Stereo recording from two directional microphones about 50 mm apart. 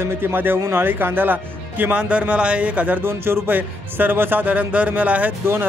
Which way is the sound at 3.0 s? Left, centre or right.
Right.